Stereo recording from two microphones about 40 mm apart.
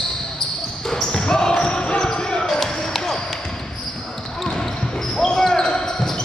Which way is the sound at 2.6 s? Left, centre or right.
Centre.